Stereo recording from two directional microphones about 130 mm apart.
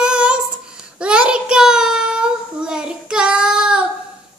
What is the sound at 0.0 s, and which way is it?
Child singing, 5° right (ahead or behind).